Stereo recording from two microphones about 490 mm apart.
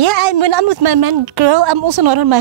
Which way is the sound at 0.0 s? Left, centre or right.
Right.